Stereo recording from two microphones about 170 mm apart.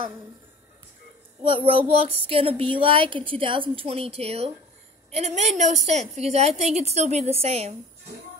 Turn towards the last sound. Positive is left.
turn(degrees=-35)  # may be behind; listen again after turning